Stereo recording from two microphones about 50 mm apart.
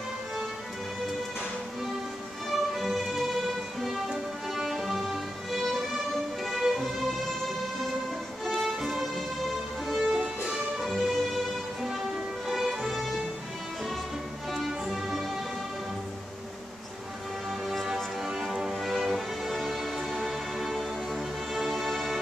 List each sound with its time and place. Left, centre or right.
2.5 s music: centre
8.5 s music: centre
10.0 s music: centre
10.8 s music: centre
14.5 s music: centre
17.6 s music: centre